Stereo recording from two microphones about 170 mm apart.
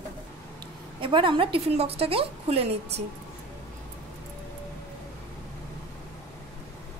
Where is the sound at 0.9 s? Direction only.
30° right (ahead or behind).